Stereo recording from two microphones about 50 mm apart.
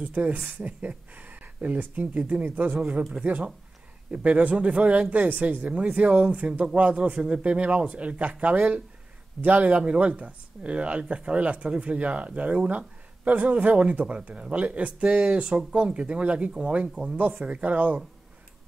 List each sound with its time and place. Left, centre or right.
0.0 s a woman's voice: right
17.6 s a woman's voice: right